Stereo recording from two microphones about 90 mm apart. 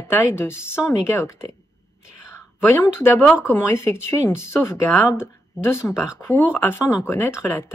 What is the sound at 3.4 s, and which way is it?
A woman's voice, 25° left (ahead or behind).